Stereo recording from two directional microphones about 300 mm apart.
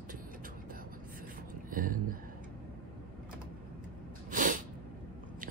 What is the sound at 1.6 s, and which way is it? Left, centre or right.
Speech, right.